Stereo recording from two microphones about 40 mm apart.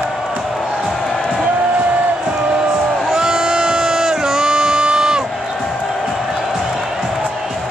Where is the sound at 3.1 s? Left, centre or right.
Centre.